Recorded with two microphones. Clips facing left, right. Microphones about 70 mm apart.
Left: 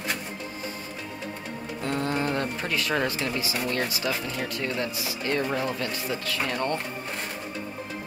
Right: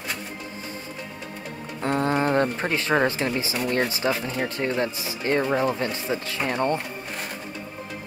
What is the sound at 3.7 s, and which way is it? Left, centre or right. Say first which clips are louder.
Speech: right 7 dB; right.